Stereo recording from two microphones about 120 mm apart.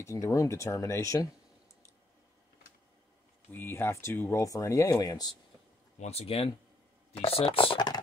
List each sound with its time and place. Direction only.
0.0 s speech: 25° left (ahead or behind)
3.5 s speech: 20° left (ahead or behind)
5.9 s speech: 60° left (ahead or behind); by 8.0 s 40° left (ahead or behind)